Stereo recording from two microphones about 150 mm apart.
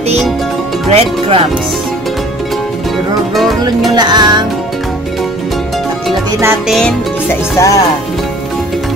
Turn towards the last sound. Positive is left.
turn(degrees=20)  # may be behind; listen again after turning